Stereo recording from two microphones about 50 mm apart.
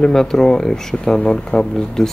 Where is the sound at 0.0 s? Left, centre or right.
Centre.